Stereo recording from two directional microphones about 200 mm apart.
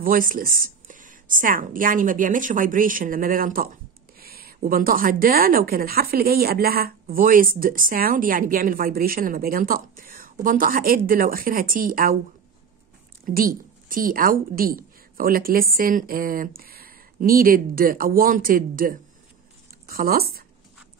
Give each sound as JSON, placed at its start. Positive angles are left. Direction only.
{"t": 0.0, "sound": "a woman's voice", "side_deg": -45}
{"t": 13.2, "sound": "a woman's voice", "side_deg": -45}